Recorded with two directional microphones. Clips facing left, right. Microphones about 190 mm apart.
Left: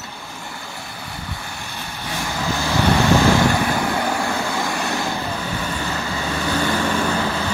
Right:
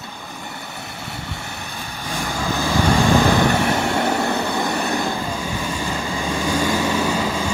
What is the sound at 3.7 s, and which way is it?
Vehicle, 25° right (ahead or behind).